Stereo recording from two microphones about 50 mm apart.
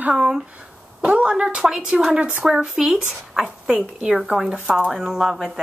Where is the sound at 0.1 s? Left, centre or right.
Centre.